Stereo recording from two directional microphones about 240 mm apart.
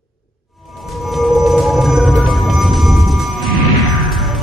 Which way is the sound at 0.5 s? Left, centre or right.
Centre.